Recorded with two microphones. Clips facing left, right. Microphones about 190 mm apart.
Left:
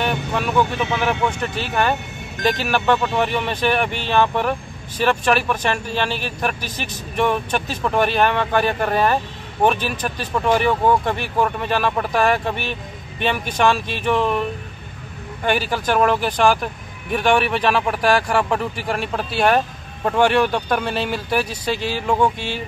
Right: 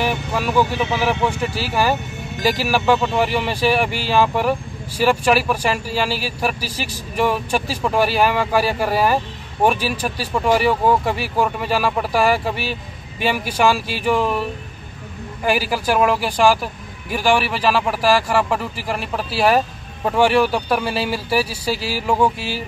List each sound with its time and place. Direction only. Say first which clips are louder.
0.0 s speech: right 1 dB; 5° right (ahead or behind)
15.4 s speech: right 1 dB; 5° right (ahead or behind)